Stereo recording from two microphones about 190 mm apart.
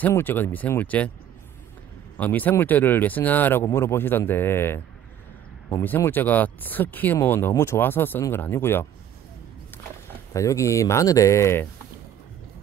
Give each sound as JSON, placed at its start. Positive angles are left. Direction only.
{"t": 0.0, "sound": "speech", "side_deg": 10}
{"t": 2.1, "sound": "speech", "side_deg": 10}
{"t": 10.3, "sound": "speech", "side_deg": 15}